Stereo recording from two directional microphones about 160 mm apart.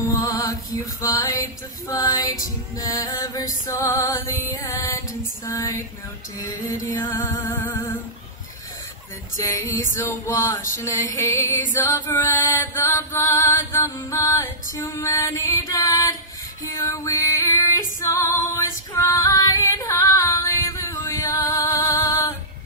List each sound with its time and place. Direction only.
0.2 s music: 20° left (ahead or behind)
1.9 s female singing: 20° left (ahead or behind)
9.7 s female singing: 20° left (ahead or behind)